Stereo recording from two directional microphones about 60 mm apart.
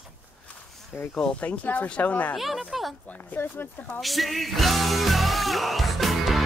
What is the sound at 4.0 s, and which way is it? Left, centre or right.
Music, centre.